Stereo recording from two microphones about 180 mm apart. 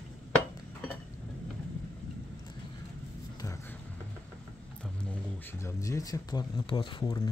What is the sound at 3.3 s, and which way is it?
Vehicle, 15° left (ahead or behind).